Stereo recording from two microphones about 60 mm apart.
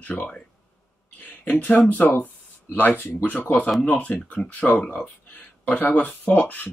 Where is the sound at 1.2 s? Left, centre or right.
Left.